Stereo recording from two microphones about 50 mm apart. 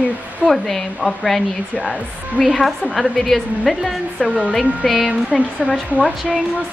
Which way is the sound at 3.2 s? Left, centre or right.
Centre.